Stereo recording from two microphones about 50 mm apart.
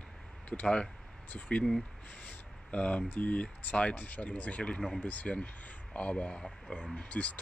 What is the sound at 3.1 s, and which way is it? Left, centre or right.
Speech, left.